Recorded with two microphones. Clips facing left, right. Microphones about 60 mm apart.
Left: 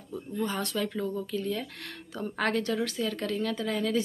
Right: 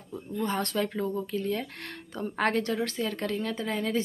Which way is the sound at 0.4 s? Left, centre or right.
Right.